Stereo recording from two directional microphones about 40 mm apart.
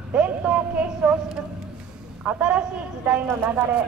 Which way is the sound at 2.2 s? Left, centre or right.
Right.